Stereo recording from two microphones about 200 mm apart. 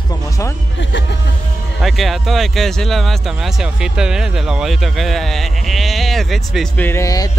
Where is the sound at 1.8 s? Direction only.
Centre (ahead or behind).